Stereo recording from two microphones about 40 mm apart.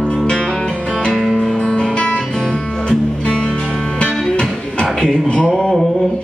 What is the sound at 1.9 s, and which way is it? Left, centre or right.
Guitar, left.